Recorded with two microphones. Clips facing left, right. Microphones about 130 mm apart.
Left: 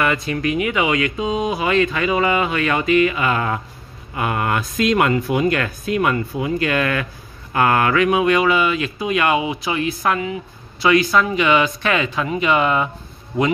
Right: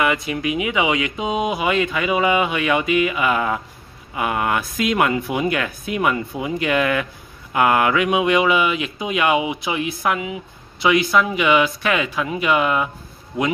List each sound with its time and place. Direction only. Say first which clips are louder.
0.0 s speech: left 1 dB; 15° right (ahead or behind)